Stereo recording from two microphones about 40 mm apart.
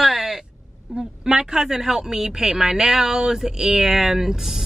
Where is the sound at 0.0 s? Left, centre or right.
Centre.